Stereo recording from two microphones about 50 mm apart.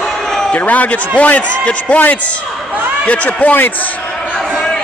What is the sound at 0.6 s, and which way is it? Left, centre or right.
A man's voice, left.